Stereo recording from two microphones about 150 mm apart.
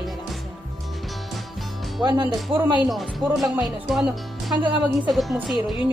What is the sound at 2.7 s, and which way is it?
Speech, centre (ahead or behind).